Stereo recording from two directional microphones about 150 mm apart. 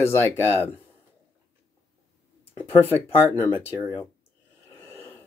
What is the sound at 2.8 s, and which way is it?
Speech, 15° left (ahead or behind).